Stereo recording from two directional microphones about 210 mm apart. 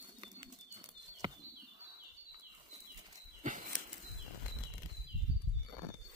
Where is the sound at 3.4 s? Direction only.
40° right (ahead or behind).